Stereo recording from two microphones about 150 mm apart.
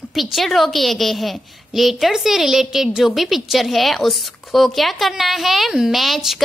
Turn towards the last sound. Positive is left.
turn(degrees=0)  # may be behind; listen again after turning